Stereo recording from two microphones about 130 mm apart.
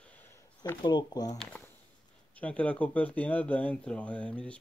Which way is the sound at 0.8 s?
30° left (ahead or behind).